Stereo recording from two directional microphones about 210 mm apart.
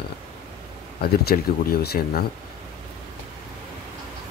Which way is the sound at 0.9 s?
50° left (ahead or behind).